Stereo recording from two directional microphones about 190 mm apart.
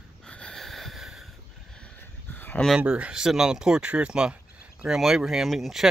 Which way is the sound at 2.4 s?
10° left (ahead or behind).